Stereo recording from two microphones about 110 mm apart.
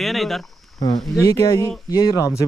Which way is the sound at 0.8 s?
35° left (ahead or behind).